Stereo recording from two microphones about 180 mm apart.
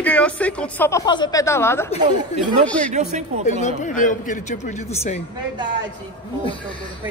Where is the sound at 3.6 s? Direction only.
45° left (ahead or behind).